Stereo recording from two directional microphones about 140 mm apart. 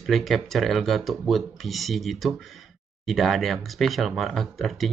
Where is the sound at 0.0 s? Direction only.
Centre (ahead or behind).